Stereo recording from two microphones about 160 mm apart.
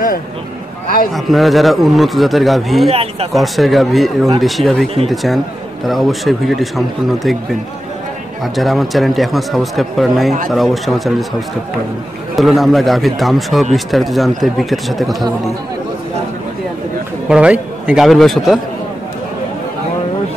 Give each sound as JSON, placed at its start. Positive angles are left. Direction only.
{"t": 1.1, "sound": "speech", "side_deg": 0}
{"t": 2.9, "sound": "speech", "side_deg": -40}
{"t": 3.3, "sound": "speech", "side_deg": 0}
{"t": 8.5, "sound": "speech", "side_deg": 0}
{"t": 17.3, "sound": "speech", "side_deg": -5}